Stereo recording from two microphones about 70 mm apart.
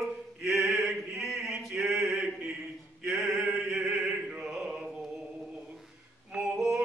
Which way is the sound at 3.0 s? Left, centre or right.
Centre.